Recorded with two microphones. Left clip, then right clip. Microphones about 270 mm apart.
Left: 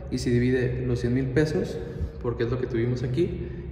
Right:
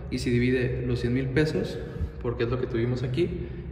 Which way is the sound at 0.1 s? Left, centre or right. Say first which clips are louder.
Left 1 dB; centre.